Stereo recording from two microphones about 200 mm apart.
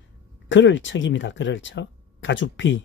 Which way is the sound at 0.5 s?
65° left (ahead or behind).